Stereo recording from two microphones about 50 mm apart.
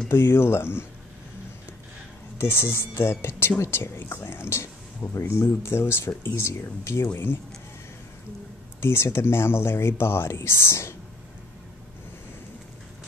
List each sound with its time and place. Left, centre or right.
0.1 s speech: left
2.3 s speech: left
5.3 s speech: left
8.8 s speech: left